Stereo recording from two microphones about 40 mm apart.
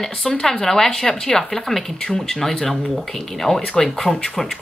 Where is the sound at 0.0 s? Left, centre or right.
Centre.